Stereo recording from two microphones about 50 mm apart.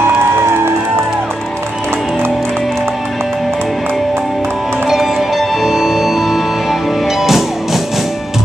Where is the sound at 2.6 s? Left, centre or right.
Centre.